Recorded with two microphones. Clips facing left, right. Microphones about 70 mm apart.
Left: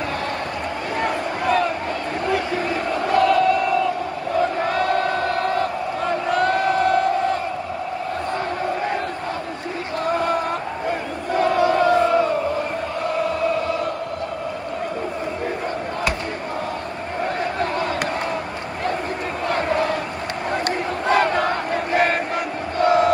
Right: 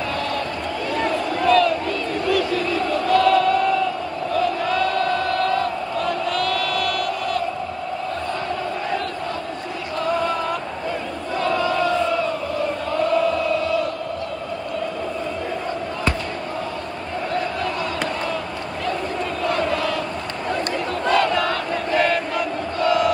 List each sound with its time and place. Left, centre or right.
0.9 s a sound: left
2.2 s battle cry: left
4.4 s crowd: left
9.9 s a sound: left
19.4 s crowd: left
21.1 s crowd: left